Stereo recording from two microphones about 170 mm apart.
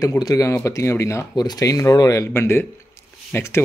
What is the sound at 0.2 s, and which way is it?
Speech, 20° left (ahead or behind).